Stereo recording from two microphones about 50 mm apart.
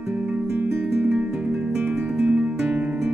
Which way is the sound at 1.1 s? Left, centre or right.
Centre.